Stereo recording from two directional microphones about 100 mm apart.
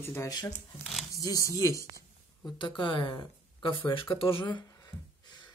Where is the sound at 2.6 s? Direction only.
55° left (ahead or behind).